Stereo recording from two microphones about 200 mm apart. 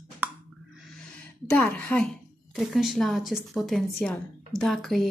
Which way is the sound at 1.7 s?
5° left (ahead or behind).